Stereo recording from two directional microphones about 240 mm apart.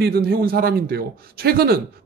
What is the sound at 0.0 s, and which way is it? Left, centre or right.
A man's voice, right.